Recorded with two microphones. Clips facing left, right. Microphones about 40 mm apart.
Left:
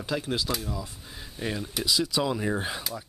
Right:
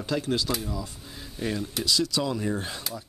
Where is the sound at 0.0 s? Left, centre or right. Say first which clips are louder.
Right 2 dB; centre.